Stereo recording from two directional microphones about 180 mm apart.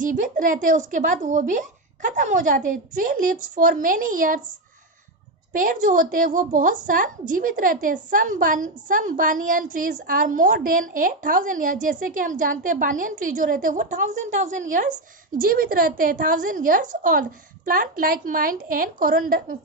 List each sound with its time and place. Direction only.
0.0 s a woman's voice: 50° right (ahead or behind)
5.5 s a woman's voice: 50° right (ahead or behind)